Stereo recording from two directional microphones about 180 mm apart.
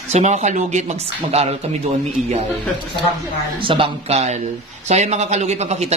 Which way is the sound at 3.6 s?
30° right (ahead or behind).